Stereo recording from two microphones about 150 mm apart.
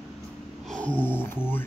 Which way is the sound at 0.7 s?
10° left (ahead or behind).